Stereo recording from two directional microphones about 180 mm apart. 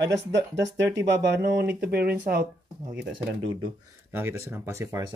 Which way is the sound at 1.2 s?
70° right (ahead or behind).